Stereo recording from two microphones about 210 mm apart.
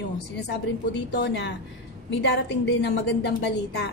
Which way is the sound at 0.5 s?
55° left (ahead or behind).